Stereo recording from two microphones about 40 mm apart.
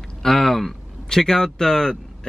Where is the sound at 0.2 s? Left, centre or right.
Centre.